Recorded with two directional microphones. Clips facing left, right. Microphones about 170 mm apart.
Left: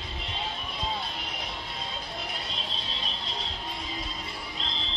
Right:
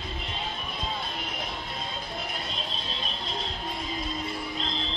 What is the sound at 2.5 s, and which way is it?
Music, 45° right (ahead or behind).